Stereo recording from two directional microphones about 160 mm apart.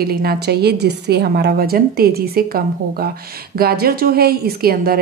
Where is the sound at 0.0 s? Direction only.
75° right (ahead or behind).